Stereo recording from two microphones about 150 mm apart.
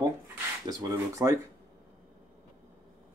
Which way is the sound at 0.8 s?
20° right (ahead or behind).